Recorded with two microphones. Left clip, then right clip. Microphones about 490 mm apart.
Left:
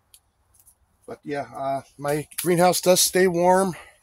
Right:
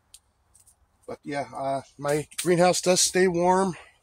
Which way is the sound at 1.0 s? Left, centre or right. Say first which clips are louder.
Left 1 dB; left.